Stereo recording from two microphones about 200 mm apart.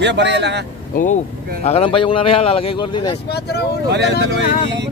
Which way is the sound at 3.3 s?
55° left (ahead or behind).